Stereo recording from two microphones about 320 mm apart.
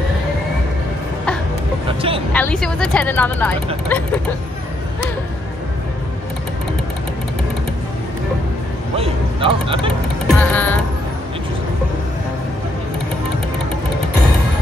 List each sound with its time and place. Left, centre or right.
1.9 s vehicle: centre
2.3 s speech: centre
8.9 s speech: centre
10.2 s music: centre